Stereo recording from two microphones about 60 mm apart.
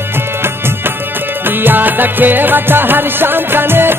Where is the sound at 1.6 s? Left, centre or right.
Right.